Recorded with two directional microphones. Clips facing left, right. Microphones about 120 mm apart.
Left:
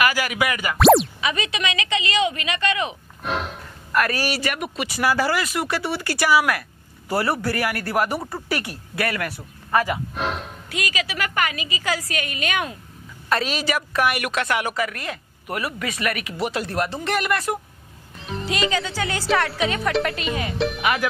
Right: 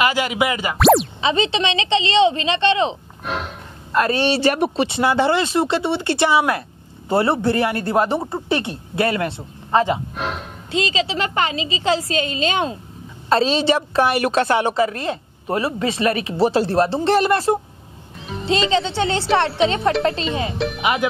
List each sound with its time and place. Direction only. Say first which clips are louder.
0.0 s a woman's voice: right 3 dB; 25° right (ahead or behind)
0.7 s a sound: even; centre (ahead or behind)
1.2 s a woman's voice: right 6 dB; 30° right (ahead or behind)
3.3 s music: even; centre (ahead or behind)
3.9 s a woman's voice: right 5 dB; 25° right (ahead or behind)
10.1 s music: even; centre (ahead or behind)
10.7 s a woman's voice: right 7 dB; 25° right (ahead or behind)
18.1 s music: even; centre (ahead or behind)
18.4 s a woman's voice: right 5 dB; 25° right (ahead or behind)
20.5 s speech: even; centre (ahead or behind)
20.8 s a woman's voice: right 4 dB; 25° right (ahead or behind)